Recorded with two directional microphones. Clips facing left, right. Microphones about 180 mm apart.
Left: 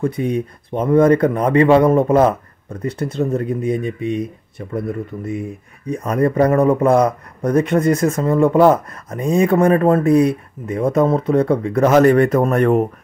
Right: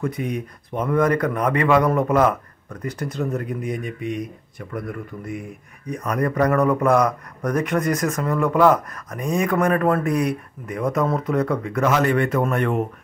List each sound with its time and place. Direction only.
0.0 s speech: 30° left (ahead or behind)